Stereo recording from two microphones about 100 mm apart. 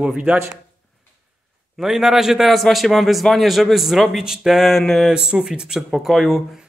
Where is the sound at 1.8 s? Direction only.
5° right (ahead or behind).